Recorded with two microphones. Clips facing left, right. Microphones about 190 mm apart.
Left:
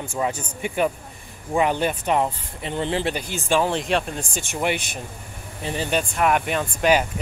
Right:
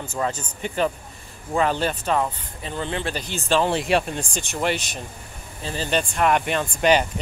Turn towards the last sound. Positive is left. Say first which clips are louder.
# even
turn(degrees=5)  # may be behind; listen again after turning